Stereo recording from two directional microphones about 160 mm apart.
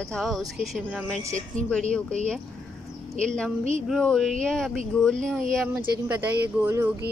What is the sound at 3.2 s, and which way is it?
Speech, 5° left (ahead or behind).